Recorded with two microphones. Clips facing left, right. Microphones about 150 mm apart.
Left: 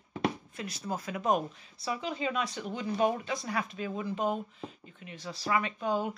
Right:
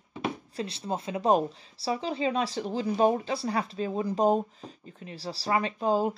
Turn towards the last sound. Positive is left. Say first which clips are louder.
# right 5 dB
turn(degrees=-35)  # may be behind; listen again after turning